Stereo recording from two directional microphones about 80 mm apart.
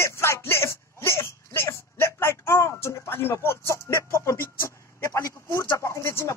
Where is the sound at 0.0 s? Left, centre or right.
Left.